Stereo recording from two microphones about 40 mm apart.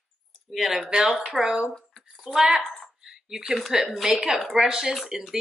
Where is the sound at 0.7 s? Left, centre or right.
Centre.